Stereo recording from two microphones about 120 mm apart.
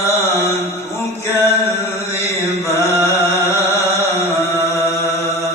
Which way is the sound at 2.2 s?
20° left (ahead or behind).